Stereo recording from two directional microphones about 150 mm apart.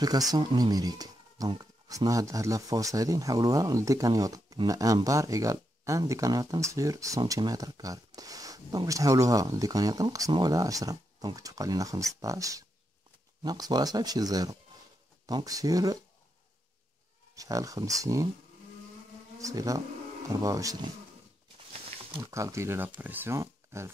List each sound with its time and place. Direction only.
0.0 s speech: 25° right (ahead or behind)
17.4 s speech: 20° right (ahead or behind)
19.4 s speech: 20° right (ahead or behind)
22.2 s speech: 20° right (ahead or behind)